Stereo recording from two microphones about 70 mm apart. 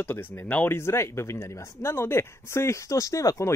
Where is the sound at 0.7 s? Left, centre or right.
Left.